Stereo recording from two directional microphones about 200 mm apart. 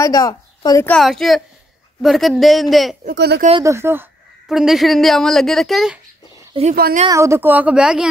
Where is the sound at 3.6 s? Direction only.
15° right (ahead or behind).